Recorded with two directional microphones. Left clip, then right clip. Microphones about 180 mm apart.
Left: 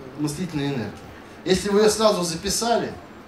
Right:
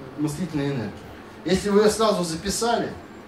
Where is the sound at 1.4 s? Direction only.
60° left (ahead or behind).